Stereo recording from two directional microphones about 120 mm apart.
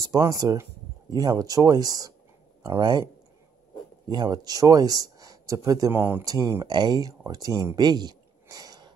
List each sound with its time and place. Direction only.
0.0 s speech: 30° right (ahead or behind)
4.1 s speech: 35° right (ahead or behind); by 6.2 s 20° right (ahead or behind)
6.2 s speech: 30° right (ahead or behind)